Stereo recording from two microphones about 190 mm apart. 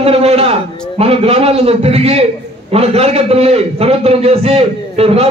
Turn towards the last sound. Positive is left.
turn(degrees=-30)  # may be behind; listen again after turning